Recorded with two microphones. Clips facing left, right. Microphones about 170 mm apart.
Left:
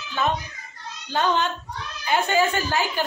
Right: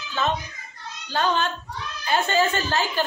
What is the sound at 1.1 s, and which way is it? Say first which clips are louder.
A man's voice: left 1 dB; 20° left (ahead or behind).